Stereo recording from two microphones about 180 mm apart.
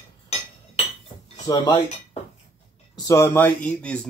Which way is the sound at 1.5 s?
25° left (ahead or behind).